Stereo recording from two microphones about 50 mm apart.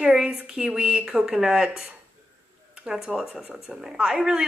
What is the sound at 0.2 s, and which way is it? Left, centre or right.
A woman's voice, centre.